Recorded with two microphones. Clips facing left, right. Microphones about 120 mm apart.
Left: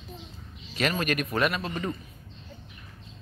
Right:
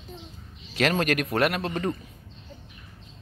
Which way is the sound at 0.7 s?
75° right (ahead or behind).